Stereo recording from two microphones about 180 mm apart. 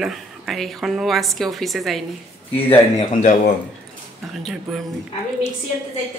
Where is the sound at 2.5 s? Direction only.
30° left (ahead or behind).